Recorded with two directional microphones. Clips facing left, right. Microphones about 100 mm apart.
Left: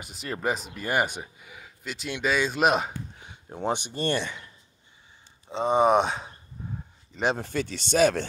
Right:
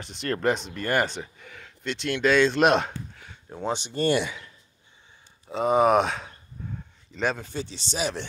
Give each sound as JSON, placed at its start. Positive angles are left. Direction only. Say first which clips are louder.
{"t": 0.0, "sound": "speech", "louder": "right 4 dB", "side_deg": 5}
{"t": 3.2, "sound": "a sound", "louder": "left 1 dB", "side_deg": 20}
{"t": 3.9, "sound": "speech", "louder": "right 4 dB", "side_deg": -5}
{"t": 5.5, "sound": "speech", "louder": "right 1 dB", "side_deg": -5}
{"t": 7.3, "sound": "speech", "louder": "left 4 dB", "side_deg": 55}